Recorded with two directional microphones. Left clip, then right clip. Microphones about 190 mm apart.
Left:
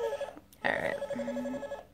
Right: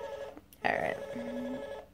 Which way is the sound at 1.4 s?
20° left (ahead or behind).